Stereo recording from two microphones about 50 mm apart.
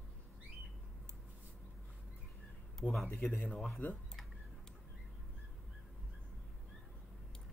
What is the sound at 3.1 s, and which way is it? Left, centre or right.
Speech, left.